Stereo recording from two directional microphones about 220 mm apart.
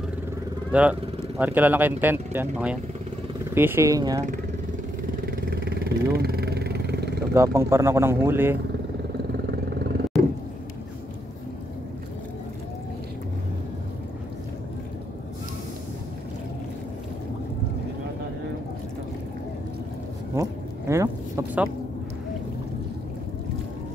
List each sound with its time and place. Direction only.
0.7 s speech: 5° right (ahead or behind)
3.4 s speech: 10° right (ahead or behind)
5.2 s vehicle: 40° right (ahead or behind)
7.3 s speech: 10° right (ahead or behind)
10.1 s a sound: centre (ahead or behind)
20.3 s a sound: 15° right (ahead or behind)